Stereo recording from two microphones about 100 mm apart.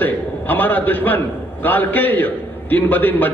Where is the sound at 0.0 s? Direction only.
20° left (ahead or behind).